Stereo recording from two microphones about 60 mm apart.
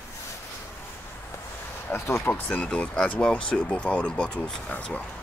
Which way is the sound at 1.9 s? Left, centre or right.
Left.